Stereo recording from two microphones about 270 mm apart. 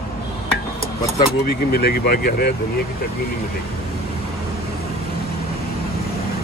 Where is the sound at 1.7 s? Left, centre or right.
Left.